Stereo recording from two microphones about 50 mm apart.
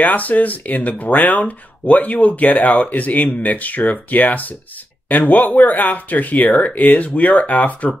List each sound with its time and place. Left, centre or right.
0.0 s speech: left